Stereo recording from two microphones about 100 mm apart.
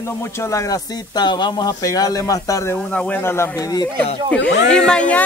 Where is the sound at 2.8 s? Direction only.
10° left (ahead or behind); by 3.9 s 40° left (ahead or behind).